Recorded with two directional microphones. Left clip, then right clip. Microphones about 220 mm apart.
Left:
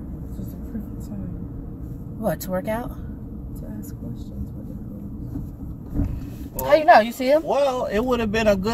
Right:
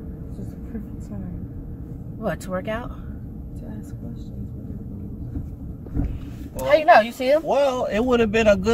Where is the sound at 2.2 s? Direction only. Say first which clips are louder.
Left 2 dB; 10° left (ahead or behind).